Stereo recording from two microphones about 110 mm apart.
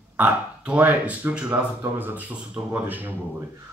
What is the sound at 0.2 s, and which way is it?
Speech, 15° right (ahead or behind).